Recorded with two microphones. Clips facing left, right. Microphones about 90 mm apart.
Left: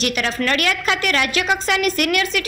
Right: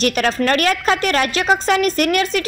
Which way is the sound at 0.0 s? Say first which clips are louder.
Right 4 dB; 40° right (ahead or behind).